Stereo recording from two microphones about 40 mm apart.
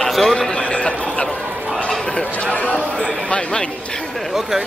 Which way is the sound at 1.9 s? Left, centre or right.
Left.